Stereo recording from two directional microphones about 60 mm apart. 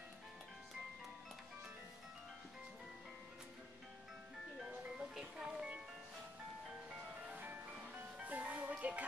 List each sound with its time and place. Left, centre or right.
4.6 s music: centre
7.4 s music: right